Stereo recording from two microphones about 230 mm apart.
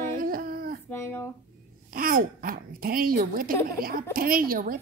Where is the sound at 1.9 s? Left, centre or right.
Right.